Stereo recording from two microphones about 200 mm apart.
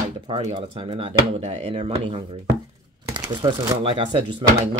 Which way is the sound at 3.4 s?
20° right (ahead or behind).